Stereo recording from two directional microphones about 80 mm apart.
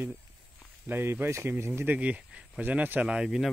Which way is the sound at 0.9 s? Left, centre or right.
Right.